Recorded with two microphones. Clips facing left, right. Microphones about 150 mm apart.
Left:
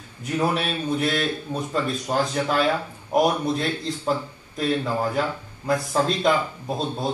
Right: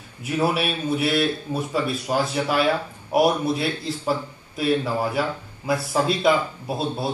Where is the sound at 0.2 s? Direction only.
10° right (ahead or behind).